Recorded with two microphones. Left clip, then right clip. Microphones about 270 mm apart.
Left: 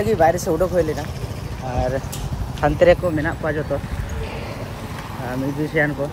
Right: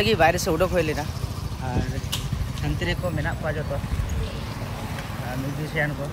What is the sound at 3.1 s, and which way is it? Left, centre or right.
Speech, left.